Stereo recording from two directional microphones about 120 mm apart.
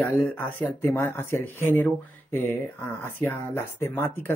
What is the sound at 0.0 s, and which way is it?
Speech, 15° left (ahead or behind).